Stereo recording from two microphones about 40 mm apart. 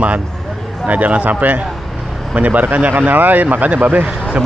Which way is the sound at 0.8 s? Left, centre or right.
Right.